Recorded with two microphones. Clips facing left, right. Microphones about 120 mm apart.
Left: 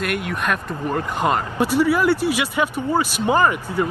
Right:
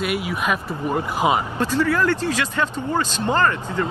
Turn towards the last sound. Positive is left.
turn(degrees=15)  # may be behind; listen again after turning